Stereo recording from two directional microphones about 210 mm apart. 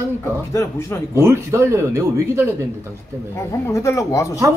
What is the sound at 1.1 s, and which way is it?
Speech, 15° right (ahead or behind).